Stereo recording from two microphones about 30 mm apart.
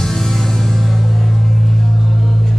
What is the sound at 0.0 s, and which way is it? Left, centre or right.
Music, centre.